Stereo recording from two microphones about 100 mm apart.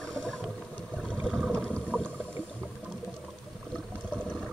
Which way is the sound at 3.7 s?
10° left (ahead or behind).